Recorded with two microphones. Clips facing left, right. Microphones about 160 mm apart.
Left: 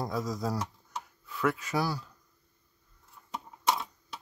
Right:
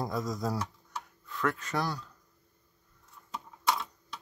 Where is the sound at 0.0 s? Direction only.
Centre (ahead or behind).